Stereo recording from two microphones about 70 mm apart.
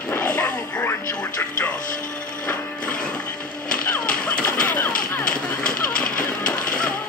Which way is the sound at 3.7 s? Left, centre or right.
Centre.